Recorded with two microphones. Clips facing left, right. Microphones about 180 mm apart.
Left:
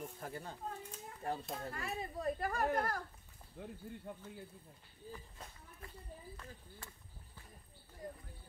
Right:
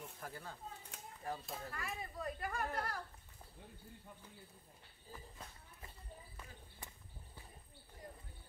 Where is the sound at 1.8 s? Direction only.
35° left (ahead or behind).